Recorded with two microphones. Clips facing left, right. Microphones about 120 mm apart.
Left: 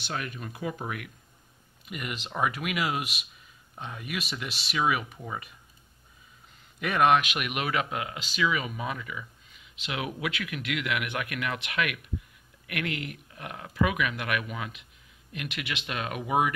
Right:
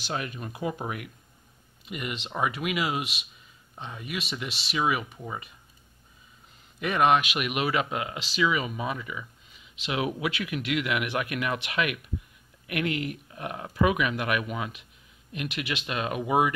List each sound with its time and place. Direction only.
0.1 s speech: 25° right (ahead or behind)
1.9 s speech: centre (ahead or behind)
6.8 s speech: centre (ahead or behind)
9.8 s speech: 30° right (ahead or behind)